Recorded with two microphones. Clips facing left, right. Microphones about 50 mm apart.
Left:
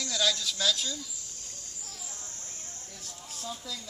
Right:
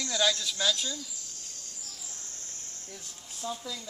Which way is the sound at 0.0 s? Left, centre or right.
Centre.